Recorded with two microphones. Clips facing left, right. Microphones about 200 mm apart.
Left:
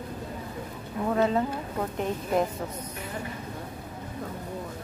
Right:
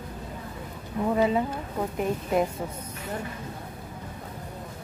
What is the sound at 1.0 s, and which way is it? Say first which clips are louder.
Speech: right 1 dB; 10° right (ahead or behind).